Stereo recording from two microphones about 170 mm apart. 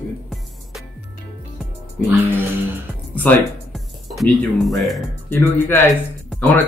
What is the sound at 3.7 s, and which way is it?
Music, centre (ahead or behind).